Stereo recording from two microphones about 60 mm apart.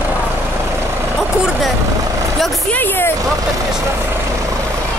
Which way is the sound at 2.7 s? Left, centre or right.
Left.